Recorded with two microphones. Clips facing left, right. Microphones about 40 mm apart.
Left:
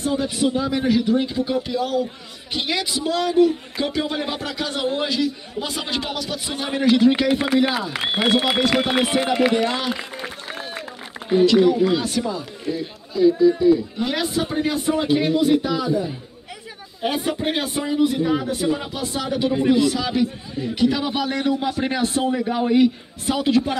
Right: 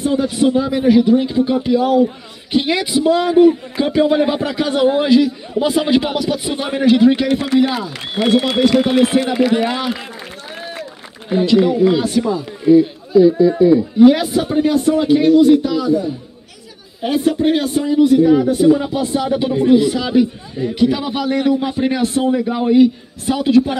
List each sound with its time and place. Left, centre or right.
0.0 s a man's voice: centre
7.2 s a man's voice: centre
7.9 s a man's voice: left
9.1 s a man's voice: centre
11.3 s a man's voice: centre
18.4 s a man's voice: centre
18.9 s a man's voice: centre